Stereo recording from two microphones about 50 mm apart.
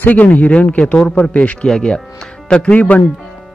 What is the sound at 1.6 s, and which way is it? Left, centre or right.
A man's voice, centre.